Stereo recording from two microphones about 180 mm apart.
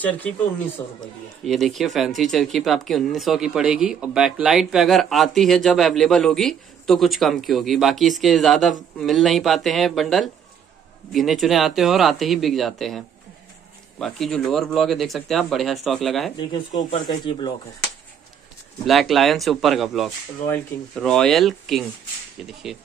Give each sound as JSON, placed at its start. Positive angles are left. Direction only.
{"t": 1.4, "sound": "speech", "side_deg": 0}
{"t": 16.3, "sound": "speech", "side_deg": 25}
{"t": 18.9, "sound": "speech", "side_deg": 0}